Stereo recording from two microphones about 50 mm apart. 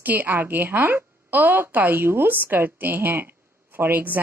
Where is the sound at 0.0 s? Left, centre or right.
Right.